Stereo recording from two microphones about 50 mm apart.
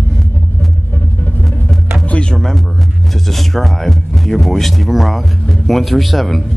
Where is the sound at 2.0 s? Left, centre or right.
Left.